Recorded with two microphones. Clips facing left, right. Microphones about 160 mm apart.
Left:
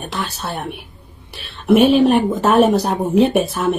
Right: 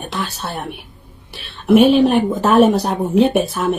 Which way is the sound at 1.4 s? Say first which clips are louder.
Right 1 dB; centre (ahead or behind).